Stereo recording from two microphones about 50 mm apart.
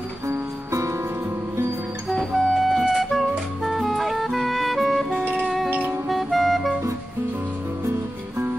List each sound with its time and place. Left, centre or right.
0.3 s music: right
2.3 s music: centre
5.7 s music: right
6.0 s music: centre
7.8 s music: right